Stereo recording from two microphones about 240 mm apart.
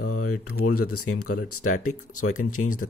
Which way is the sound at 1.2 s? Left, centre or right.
Left.